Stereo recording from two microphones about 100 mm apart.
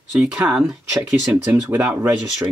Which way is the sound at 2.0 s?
30° right (ahead or behind).